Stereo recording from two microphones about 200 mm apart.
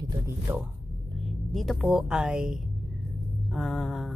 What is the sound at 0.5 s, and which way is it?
Speech, 15° right (ahead or behind).